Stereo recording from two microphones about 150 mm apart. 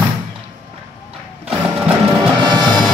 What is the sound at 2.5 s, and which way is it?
Music, 30° right (ahead or behind).